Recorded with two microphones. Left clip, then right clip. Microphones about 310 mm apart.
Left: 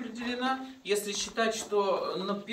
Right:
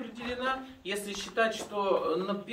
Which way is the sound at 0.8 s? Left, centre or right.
Right.